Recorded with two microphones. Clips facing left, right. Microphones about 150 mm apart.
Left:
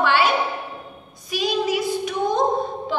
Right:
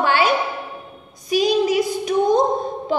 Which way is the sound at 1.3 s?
45° right (ahead or behind).